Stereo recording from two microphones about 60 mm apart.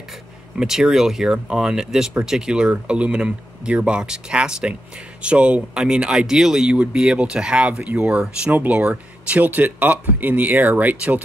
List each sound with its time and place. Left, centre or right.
0.6 s speech: centre
8.5 s speech: right